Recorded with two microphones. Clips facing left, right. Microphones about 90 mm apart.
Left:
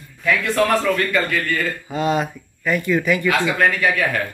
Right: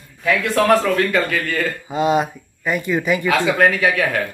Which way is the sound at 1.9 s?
15° right (ahead or behind).